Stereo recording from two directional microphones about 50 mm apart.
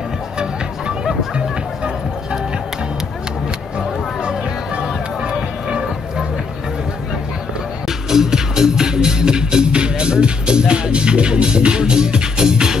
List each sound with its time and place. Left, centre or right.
4.2 s music: centre
8.1 s music: centre